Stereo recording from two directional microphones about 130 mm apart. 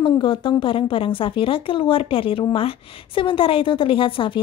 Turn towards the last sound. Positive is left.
turn(degrees=45)  # may be behind; listen again after turning